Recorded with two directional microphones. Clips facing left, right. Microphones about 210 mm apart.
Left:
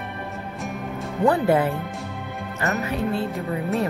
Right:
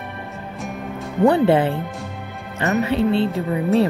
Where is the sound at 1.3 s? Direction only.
30° right (ahead or behind).